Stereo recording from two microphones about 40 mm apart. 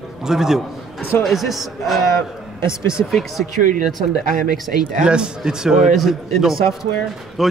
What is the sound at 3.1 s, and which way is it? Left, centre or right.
Speech, centre.